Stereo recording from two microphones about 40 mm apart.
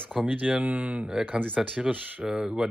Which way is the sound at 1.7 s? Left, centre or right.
Right.